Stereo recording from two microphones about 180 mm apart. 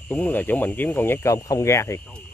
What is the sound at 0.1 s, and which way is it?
Speech, 10° left (ahead or behind).